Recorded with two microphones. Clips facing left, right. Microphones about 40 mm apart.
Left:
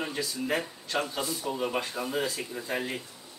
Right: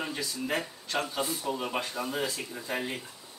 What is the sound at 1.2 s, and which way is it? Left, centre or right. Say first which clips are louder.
Speech: right 1 dB; right.